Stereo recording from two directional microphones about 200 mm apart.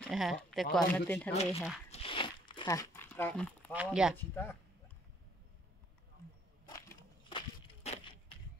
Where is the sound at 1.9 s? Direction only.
30° left (ahead or behind); by 3.7 s 5° left (ahead or behind).